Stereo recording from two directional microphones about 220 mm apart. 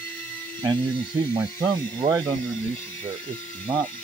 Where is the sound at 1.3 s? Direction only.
20° right (ahead or behind).